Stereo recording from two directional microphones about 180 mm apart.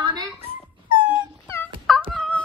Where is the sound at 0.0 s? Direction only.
25° right (ahead or behind).